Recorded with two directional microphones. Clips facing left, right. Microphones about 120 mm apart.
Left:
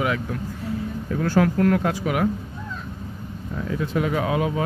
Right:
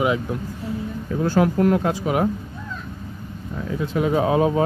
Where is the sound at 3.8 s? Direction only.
25° right (ahead or behind).